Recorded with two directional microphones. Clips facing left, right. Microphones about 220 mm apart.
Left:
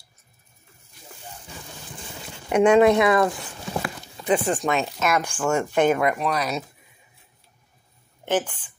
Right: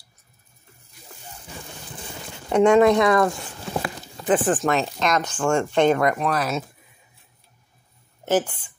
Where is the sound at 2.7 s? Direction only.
20° left (ahead or behind).